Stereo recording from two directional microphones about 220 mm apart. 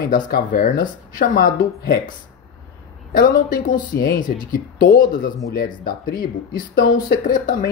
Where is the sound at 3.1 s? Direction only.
40° left (ahead or behind).